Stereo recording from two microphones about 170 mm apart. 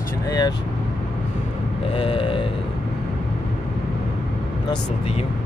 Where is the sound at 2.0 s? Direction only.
30° left (ahead or behind).